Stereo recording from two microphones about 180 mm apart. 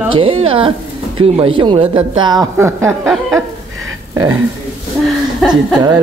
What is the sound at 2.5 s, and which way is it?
Speech, 15° right (ahead or behind).